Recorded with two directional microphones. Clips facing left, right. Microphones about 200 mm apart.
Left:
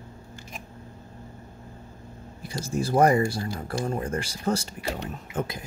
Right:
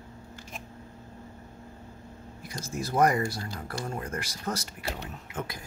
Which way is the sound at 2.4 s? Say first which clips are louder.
Left 6 dB; 30° left (ahead or behind).